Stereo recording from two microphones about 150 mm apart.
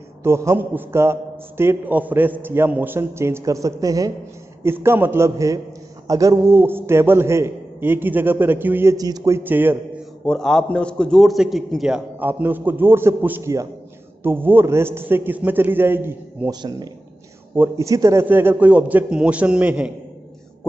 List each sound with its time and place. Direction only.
0.2 s a man's voice: 20° right (ahead or behind)
10.2 s a man's voice: 5° left (ahead or behind); by 16.5 s 15° right (ahead or behind)
17.6 s a man's voice: 20° right (ahead or behind)